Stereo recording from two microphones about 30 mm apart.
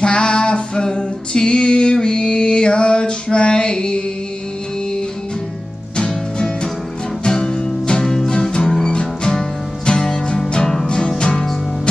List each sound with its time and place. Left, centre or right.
0.0 s music: left
5.9 s music: left
8.0 s music: centre
8.3 s music: left
8.6 s music: centre
8.9 s music: left